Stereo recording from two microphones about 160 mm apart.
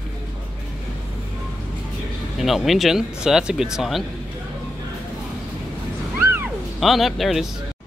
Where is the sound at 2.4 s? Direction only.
Centre (ahead or behind).